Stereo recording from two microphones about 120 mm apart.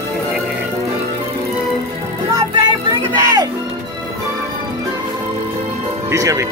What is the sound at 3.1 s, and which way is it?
Music, 30° right (ahead or behind).